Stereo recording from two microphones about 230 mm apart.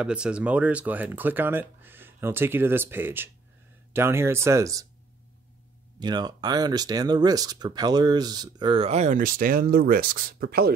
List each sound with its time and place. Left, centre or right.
0.0 s speech: centre
5.9 s speech: centre; by 10.7 s right